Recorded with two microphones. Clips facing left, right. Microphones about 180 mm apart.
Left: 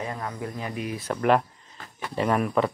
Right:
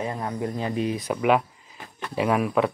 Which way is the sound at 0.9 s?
15° right (ahead or behind).